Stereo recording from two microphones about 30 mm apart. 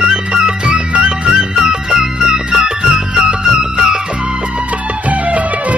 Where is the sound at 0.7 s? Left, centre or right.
Right.